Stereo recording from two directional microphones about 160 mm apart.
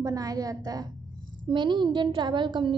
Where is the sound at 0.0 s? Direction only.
20° right (ahead or behind).